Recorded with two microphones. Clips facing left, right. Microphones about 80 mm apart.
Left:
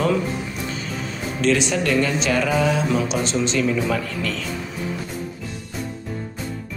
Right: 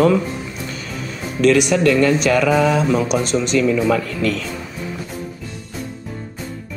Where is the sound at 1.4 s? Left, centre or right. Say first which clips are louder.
Right 6 dB; right.